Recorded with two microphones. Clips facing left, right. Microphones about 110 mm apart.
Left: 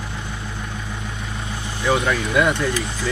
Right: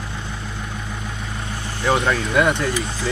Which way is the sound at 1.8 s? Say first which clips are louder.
Right 1 dB; 25° right (ahead or behind).